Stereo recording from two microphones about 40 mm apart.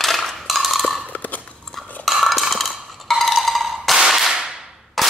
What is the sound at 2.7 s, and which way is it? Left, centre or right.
Wood block, centre.